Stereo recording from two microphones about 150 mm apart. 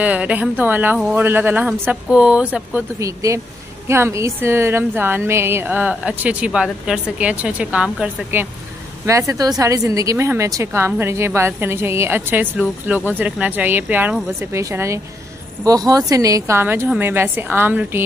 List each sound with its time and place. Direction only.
0.0 s a woman's voice: 10° right (ahead or behind)
3.0 s a woman's voice: 20° right (ahead or behind)
9.0 s a woman's voice: 20° right (ahead or behind)